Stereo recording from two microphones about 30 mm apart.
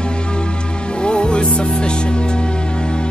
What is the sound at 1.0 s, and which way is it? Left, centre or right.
Music, left.